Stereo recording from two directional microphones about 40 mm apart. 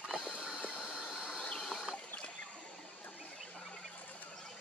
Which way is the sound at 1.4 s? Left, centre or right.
Left.